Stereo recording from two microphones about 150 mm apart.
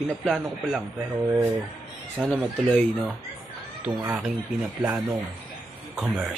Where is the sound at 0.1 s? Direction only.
Centre (ahead or behind).